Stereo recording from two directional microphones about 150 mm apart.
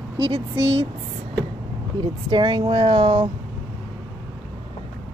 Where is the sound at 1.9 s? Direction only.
30° right (ahead or behind).